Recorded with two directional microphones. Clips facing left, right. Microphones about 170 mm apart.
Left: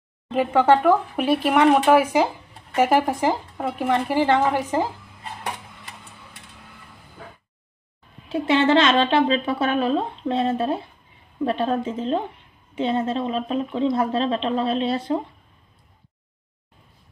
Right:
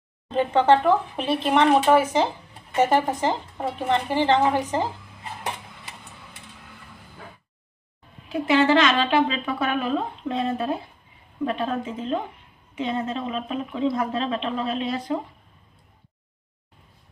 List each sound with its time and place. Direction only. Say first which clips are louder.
0.3 s speech: left 1 dB; 10° left (ahead or behind)
8.3 s speech: left 1 dB; 25° left (ahead or behind)